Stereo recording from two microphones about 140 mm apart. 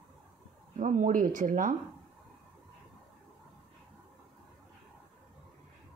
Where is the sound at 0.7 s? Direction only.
65° right (ahead or behind).